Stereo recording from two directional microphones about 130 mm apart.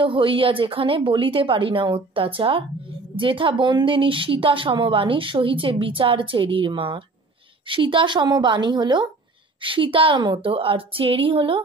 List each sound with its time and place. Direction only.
0.0 s a woman's voice: 40° right (ahead or behind)